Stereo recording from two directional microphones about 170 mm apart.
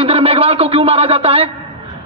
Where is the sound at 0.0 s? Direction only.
35° right (ahead or behind).